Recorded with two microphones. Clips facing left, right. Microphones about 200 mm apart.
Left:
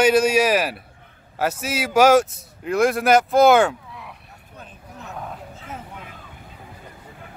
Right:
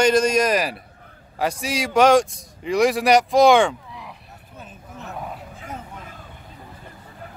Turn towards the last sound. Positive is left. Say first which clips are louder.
# right 1 dB
turn(degrees=0)  # may be behind; listen again after turning